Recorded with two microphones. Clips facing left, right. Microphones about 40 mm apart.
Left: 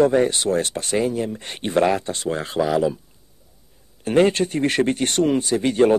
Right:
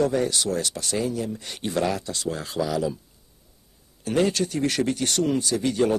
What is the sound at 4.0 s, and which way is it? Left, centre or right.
Speech, left.